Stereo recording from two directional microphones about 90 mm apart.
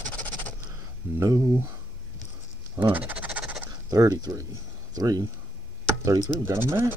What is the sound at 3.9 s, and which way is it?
Speech, 40° right (ahead or behind).